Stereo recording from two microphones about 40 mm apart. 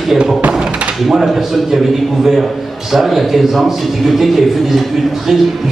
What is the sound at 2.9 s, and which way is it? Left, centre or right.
A man's voice, centre.